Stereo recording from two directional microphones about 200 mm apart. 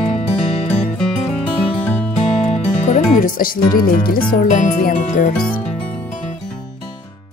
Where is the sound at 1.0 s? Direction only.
Centre (ahead or behind).